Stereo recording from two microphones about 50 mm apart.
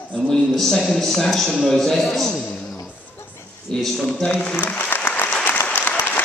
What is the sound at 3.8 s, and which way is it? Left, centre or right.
Speech, centre.